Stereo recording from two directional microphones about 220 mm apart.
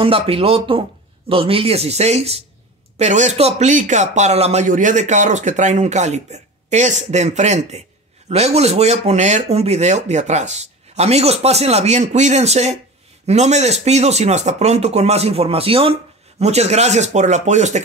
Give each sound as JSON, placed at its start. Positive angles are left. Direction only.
{"t": 0.0, "sound": "speech", "side_deg": -25}